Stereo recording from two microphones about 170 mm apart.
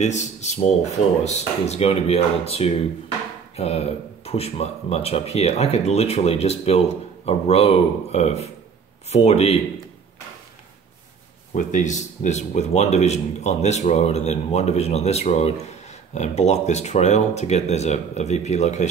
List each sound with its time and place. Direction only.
0.0 s speech: 45° left (ahead or behind)
11.5 s speech: 45° left (ahead or behind)